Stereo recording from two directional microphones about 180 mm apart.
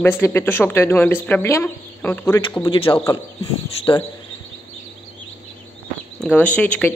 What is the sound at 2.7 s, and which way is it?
Speech, 25° left (ahead or behind).